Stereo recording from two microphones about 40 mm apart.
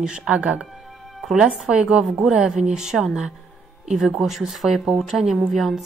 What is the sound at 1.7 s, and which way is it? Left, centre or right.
A woman's voice, right.